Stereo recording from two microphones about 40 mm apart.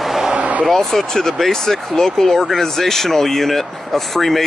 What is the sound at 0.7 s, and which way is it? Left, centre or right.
Speech, centre.